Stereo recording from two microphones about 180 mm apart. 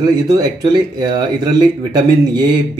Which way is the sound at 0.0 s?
20° right (ahead or behind).